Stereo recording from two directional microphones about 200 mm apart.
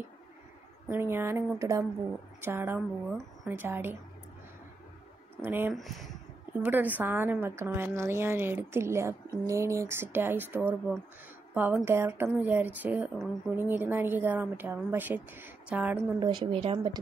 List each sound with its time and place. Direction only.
0.8 s a woman's voice: 10° right (ahead or behind)
5.4 s a woman's voice: 10° right (ahead or behind)
5.8 s a woman's voice: centre (ahead or behind)
16.2 s speech: 20° right (ahead or behind)